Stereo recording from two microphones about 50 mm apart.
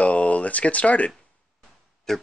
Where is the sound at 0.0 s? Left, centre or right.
Left.